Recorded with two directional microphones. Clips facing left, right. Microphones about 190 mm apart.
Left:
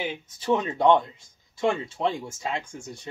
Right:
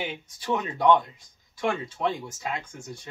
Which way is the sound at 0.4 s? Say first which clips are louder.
Left 3 dB; 25° left (ahead or behind).